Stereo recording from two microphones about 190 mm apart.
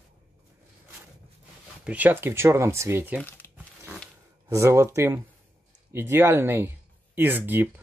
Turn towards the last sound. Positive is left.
turn(degrees=-10)  # may be behind; listen again after turning